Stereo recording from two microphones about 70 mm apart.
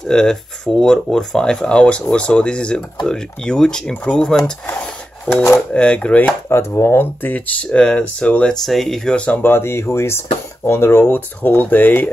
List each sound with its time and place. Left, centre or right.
0.0 s speech: centre
6.5 s speech: left; by 8.5 s centre
8.6 s speech: centre
9.4 s speech: left